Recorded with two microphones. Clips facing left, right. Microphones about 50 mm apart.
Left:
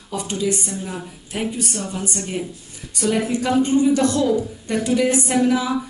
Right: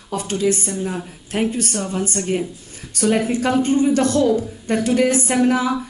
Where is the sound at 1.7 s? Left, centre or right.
Right.